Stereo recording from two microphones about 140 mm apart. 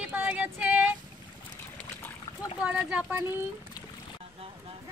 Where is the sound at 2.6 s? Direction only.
10° right (ahead or behind).